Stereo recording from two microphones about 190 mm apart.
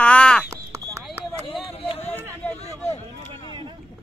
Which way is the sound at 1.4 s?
30° left (ahead or behind).